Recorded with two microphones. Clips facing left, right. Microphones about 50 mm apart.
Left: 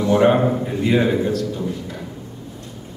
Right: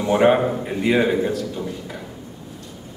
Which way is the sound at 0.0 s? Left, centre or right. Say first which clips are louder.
Left 1 dB; right.